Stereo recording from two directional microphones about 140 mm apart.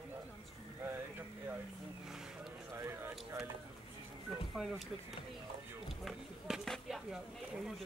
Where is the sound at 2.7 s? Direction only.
20° right (ahead or behind).